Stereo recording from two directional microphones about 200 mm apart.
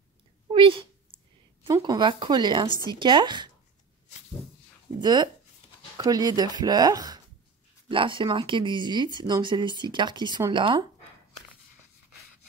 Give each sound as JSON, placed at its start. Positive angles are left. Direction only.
{"t": 0.5, "sound": "a sound", "side_deg": -25}
{"t": 1.7, "sound": "speech", "side_deg": -20}
{"t": 5.0, "sound": "speech", "side_deg": -20}